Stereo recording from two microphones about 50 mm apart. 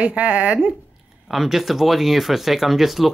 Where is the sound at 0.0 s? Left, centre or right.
Right.